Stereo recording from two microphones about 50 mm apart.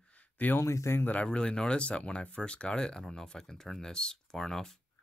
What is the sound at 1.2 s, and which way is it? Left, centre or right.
Speech, centre.